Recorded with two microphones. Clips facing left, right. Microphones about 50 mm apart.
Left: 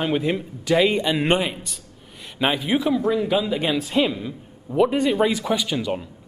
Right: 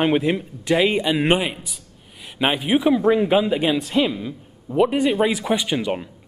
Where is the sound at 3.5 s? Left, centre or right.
Centre.